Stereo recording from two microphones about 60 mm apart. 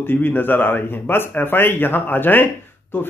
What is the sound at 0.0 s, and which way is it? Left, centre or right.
Speech, left.